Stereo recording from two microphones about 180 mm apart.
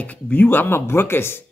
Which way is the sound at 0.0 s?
10° left (ahead or behind).